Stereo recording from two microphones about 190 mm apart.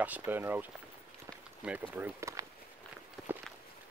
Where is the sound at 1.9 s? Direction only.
10° right (ahead or behind).